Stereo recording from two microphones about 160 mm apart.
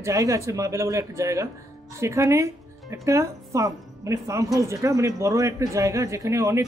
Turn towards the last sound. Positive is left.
turn(degrees=-20)  # may be behind; listen again after turning